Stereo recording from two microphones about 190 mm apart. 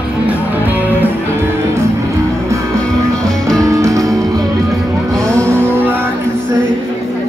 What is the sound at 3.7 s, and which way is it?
Music, 15° right (ahead or behind).